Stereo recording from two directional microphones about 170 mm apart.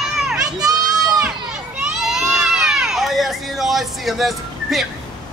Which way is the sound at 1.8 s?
5° right (ahead or behind).